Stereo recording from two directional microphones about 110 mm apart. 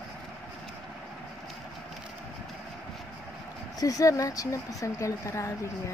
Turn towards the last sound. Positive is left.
turn(degrees=25)  # may be behind; listen again after turning